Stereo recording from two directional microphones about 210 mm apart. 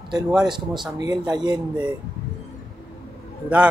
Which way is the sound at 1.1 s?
20° right (ahead or behind).